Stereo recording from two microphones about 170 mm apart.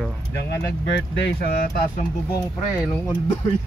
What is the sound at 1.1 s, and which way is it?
Speech, 75° left (ahead or behind).